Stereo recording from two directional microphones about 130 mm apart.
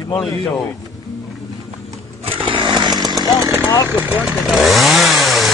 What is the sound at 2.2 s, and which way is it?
Chainsaw, 45° right (ahead or behind).